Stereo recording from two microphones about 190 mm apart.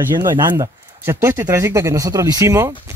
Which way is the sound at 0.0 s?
15° right (ahead or behind).